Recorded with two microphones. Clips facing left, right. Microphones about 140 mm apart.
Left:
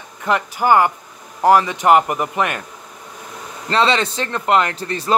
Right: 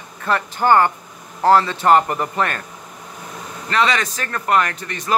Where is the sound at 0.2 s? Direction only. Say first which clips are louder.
Left 1 dB; 15° left (ahead or behind).